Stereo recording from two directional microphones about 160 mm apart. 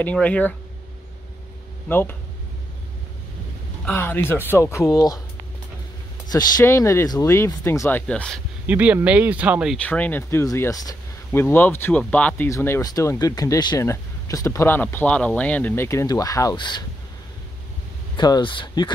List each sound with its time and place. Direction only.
0.0 s speech: 10° left (ahead or behind)
1.9 s speech: 15° left (ahead or behind)
3.8 s speech: 10° left (ahead or behind)
6.3 s speech: 20° left (ahead or behind)
8.1 s speech: 5° left (ahead or behind)
8.6 s speech: 10° right (ahead or behind)
9.8 s speech: 10° left (ahead or behind); by 16.8 s 30° left (ahead or behind)
18.1 s speech: 25° left (ahead or behind)